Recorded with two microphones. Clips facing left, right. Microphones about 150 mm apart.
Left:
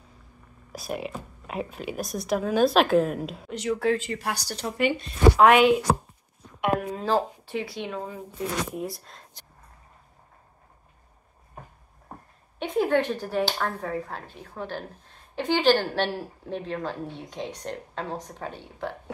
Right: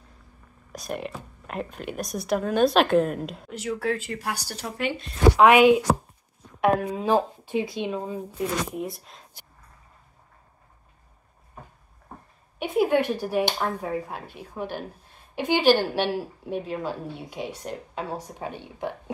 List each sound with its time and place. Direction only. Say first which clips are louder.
0.7 s a woman's voice: even; 5° left (ahead or behind)
6.9 s a woman's voice: right 2 dB; 15° right (ahead or behind)
8.7 s a woman's voice: right 1 dB; centre (ahead or behind)
12.5 s a woman's voice: right 1 dB; 10° right (ahead or behind)